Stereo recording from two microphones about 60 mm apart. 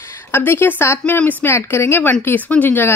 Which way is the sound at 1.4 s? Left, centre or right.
Left.